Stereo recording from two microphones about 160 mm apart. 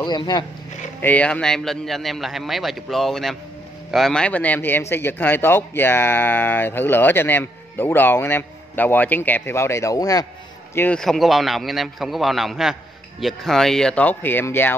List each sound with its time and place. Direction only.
0.0 s speech: 30° left (ahead or behind)
1.0 s a man's voice: 10° left (ahead or behind)
10.7 s a man's voice: 10° left (ahead or behind)